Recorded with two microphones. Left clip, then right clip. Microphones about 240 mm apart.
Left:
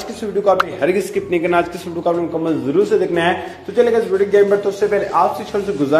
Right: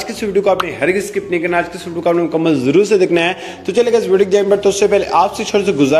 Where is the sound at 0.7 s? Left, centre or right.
Centre.